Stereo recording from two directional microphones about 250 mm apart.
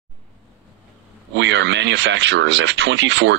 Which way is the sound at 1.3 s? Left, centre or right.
Right.